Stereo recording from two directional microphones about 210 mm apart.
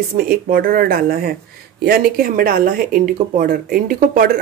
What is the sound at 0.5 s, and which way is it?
Speech, 40° right (ahead or behind).